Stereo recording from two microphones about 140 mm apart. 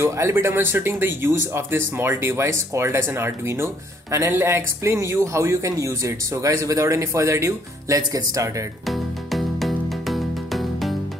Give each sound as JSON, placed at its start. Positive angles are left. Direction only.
{"t": 0.0, "sound": "speech", "side_deg": -20}
{"t": 8.8, "sound": "music", "side_deg": 0}